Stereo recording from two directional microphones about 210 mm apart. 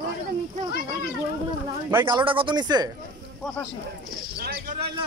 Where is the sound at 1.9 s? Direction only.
15° right (ahead or behind).